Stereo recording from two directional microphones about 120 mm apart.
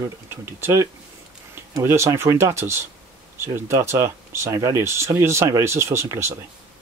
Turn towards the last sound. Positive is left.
turn(degrees=-20)  # may be behind; listen again after turning